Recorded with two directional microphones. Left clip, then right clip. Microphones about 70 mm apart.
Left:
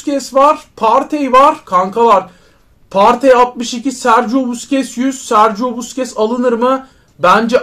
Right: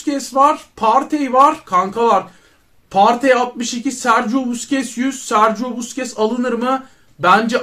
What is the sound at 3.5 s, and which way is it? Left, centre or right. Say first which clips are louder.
Speech: left 3 dB; centre.